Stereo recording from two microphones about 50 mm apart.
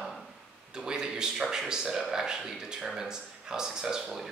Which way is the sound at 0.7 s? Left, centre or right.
Centre.